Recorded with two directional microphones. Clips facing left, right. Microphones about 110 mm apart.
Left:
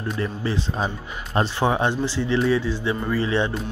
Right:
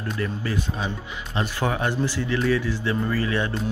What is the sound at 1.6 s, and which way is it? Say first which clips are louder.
Speech: left 1 dB; 25° left (ahead or behind).